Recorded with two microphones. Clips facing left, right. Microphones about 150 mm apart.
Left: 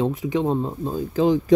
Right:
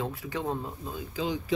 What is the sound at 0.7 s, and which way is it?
Speech, 40° left (ahead or behind).